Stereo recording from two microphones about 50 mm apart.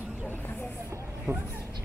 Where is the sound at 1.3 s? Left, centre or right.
Right.